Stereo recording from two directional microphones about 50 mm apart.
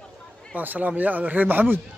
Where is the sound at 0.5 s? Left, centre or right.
Right.